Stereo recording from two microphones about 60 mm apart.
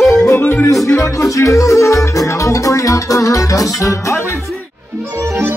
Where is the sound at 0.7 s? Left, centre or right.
Left.